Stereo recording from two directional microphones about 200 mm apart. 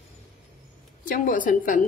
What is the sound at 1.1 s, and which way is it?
Speech, 40° left (ahead or behind).